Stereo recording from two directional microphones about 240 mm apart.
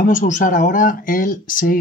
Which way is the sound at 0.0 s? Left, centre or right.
Left.